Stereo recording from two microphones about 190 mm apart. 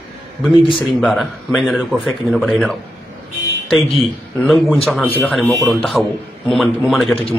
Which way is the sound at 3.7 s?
30° left (ahead or behind).